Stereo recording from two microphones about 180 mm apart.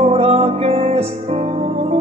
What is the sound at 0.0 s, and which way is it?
Music, 35° right (ahead or behind).